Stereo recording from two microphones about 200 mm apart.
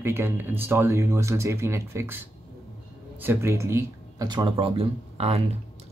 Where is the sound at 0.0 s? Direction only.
10° right (ahead or behind).